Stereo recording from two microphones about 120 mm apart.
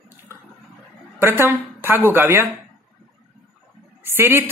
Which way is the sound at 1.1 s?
20° right (ahead or behind).